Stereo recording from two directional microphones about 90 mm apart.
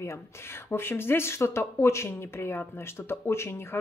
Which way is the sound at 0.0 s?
30° left (ahead or behind).